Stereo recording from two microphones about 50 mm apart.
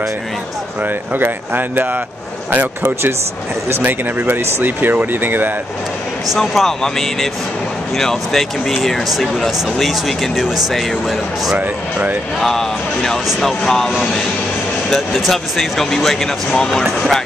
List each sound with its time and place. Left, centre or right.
1.1 s speech: right
6.4 s speech: centre
11.5 s speech: right
12.4 s speech: centre
15.0 s speech: centre
16.5 s speech: centre
16.8 s speech: centre